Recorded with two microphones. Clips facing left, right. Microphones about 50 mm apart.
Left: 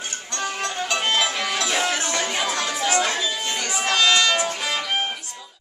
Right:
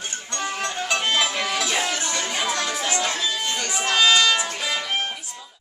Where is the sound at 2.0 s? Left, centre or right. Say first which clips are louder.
Left 2 dB; left.